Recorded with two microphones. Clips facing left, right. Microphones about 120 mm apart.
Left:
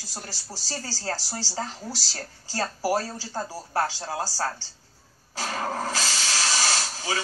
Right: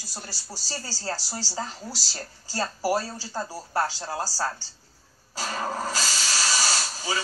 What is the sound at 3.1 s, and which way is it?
Speech, 15° left (ahead or behind).